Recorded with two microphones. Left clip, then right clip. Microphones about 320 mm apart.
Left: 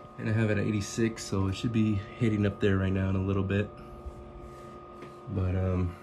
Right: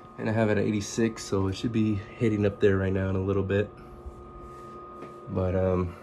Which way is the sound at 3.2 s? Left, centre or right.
Right.